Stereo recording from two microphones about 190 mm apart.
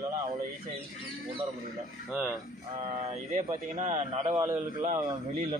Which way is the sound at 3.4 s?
45° right (ahead or behind).